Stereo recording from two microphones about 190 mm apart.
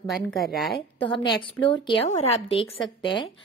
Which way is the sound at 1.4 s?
25° left (ahead or behind).